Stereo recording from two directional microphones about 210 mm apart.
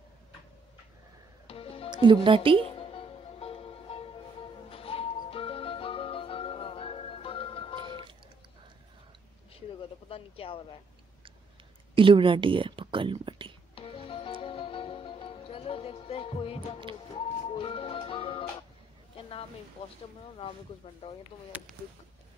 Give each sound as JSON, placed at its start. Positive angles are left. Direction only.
{"t": 1.5, "sound": "music", "side_deg": 25}
{"t": 1.9, "sound": "music", "side_deg": -25}
{"t": 2.2, "sound": "a woman's voice", "side_deg": -25}
{"t": 2.6, "sound": "music", "side_deg": 25}
{"t": 9.5, "sound": "a sound", "side_deg": 25}
{"t": 11.9, "sound": "speech", "side_deg": -25}
{"t": 13.7, "sound": "music", "side_deg": 25}